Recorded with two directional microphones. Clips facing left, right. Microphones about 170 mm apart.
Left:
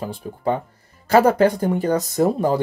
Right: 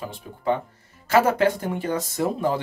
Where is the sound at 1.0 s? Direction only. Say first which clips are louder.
Left 4 dB; 40° left (ahead or behind).